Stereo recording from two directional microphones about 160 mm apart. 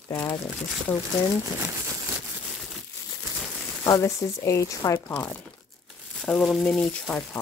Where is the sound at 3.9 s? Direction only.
20° left (ahead or behind).